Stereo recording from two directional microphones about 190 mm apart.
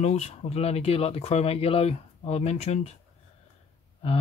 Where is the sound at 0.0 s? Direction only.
35° left (ahead or behind).